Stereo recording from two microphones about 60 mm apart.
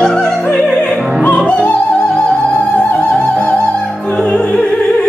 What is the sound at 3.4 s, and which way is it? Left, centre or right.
Opera, left.